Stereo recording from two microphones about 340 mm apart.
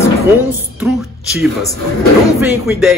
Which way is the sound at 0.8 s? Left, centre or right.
Centre.